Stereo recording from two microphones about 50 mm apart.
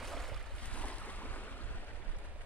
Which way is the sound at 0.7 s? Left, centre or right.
Left.